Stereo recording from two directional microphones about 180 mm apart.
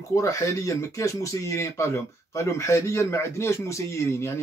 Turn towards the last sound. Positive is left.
turn(degrees=15)  # may be behind; listen again after turning